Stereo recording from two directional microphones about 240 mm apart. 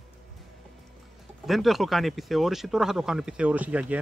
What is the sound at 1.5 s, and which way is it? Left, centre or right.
Speech, centre.